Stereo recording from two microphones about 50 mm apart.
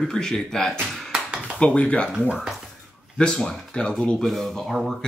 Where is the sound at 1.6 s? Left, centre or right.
Left.